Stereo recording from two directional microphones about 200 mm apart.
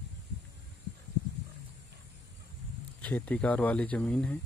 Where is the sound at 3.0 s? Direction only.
10° left (ahead or behind).